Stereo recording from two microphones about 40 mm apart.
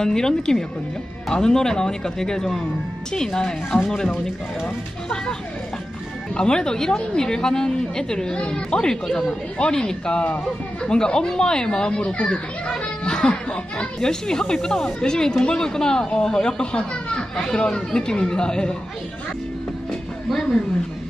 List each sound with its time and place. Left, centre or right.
0.0 s a child's voice: centre
6.3 s a child's voice: centre
20.2 s speech: centre